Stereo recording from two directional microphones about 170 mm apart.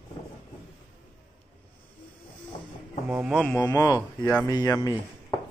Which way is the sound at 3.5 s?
20° left (ahead or behind).